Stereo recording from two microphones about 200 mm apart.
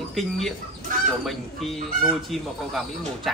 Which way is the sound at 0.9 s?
45° right (ahead or behind).